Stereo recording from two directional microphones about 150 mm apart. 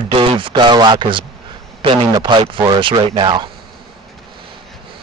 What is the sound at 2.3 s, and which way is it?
A man's voice, 30° right (ahead or behind).